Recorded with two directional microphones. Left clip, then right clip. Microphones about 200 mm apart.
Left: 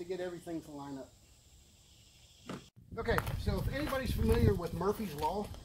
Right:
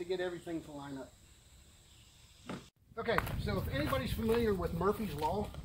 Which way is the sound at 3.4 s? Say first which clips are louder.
Right 1 dB; 25° left (ahead or behind).